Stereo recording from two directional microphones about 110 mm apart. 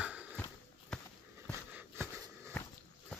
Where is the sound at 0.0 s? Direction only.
10° right (ahead or behind).